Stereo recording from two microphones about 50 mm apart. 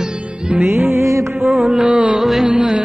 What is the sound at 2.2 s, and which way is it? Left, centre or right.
Music, centre.